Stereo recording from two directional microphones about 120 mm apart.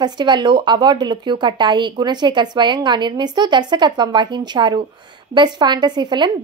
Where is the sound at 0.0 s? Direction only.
40° right (ahead or behind).